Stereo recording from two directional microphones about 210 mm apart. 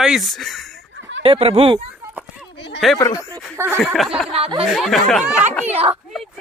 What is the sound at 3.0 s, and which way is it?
Speech, 15° left (ahead or behind).